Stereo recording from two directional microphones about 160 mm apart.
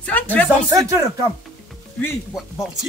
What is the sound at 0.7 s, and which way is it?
Speech, 20° right (ahead or behind).